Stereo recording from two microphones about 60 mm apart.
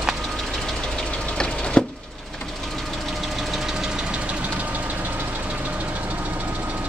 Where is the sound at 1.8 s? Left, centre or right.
Centre.